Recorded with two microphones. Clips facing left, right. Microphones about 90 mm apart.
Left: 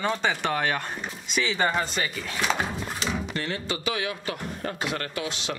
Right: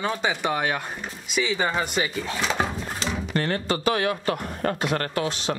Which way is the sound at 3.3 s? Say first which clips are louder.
Right 6 dB; 50° right (ahead or behind).